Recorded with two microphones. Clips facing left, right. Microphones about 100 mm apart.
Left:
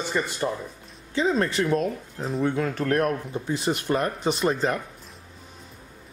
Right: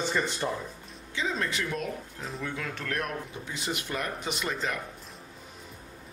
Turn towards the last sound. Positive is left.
turn(degrees=35)  # may be behind; listen again after turning